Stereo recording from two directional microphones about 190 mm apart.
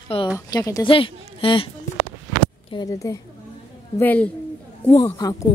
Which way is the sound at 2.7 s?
20° left (ahead or behind).